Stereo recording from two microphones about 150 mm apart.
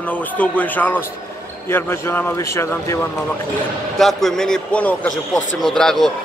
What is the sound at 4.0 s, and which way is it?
A man's voice, centre (ahead or behind).